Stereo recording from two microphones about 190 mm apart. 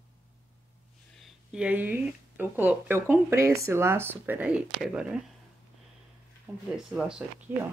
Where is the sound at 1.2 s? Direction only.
5° right (ahead or behind).